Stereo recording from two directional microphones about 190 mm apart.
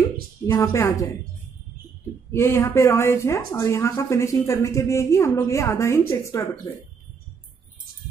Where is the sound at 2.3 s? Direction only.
15° left (ahead or behind).